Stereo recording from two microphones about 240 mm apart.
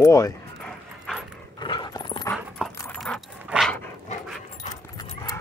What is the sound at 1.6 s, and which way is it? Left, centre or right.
Dog, centre.